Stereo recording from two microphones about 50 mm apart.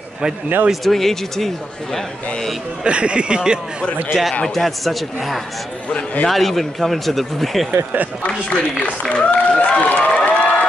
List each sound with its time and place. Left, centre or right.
0.8 s speech: centre
2.8 s speech: right
4.1 s speech: centre
7.7 s speech: right
8.5 s speech: left
9.1 s applause: left
10.1 s crowd: left